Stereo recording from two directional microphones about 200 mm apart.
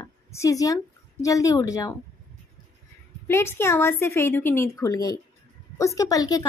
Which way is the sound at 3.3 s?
10° left (ahead or behind).